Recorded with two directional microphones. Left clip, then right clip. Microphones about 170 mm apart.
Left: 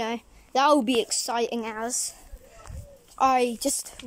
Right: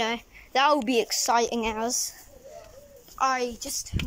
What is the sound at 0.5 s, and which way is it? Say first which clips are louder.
A woman's voice: left 1 dB; 20° left (ahead or behind).